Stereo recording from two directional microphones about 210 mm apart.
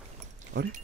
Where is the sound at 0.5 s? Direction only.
55° right (ahead or behind).